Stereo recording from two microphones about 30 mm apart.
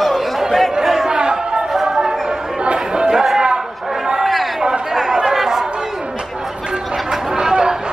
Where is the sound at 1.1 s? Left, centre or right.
Right.